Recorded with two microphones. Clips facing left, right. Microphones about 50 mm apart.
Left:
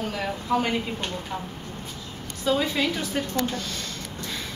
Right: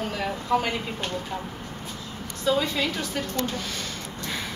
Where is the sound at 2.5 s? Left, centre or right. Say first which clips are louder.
Left 1 dB; centre.